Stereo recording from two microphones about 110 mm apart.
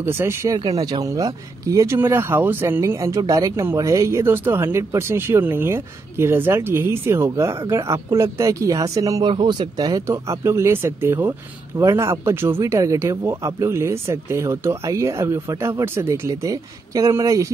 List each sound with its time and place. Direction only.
0.0 s speech: 20° right (ahead or behind)
0.7 s speech: 35° right (ahead or behind)
9.2 s speech: 45° right (ahead or behind); by 17.5 s 30° right (ahead or behind)